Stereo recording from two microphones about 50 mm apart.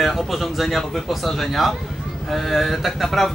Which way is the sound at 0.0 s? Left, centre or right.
Centre.